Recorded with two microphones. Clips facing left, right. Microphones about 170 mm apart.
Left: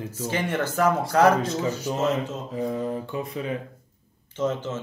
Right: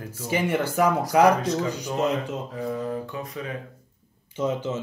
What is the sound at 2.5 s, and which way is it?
Speech, 25° left (ahead or behind).